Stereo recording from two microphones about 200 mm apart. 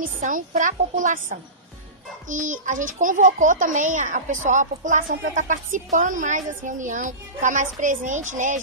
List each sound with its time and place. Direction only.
0.0 s a child's voice: 40° right (ahead or behind)